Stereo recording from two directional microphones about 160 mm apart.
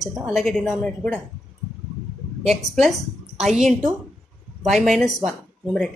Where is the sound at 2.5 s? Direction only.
Centre (ahead or behind).